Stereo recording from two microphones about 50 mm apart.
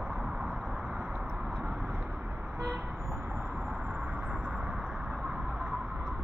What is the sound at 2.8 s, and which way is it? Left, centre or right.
Vehicle, centre.